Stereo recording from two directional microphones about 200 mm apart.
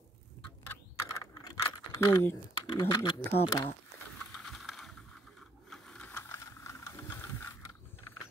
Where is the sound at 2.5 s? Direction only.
20° left (ahead or behind).